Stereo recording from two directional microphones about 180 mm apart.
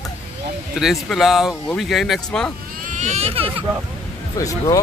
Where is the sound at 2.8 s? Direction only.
45° right (ahead or behind).